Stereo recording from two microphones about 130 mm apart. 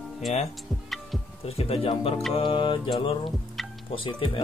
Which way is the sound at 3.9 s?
40° left (ahead or behind).